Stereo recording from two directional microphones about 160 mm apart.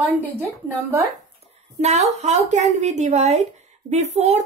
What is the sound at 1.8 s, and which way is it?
A woman's voice, 45° right (ahead or behind).